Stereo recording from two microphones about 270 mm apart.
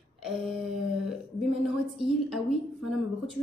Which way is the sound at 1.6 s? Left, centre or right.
Centre.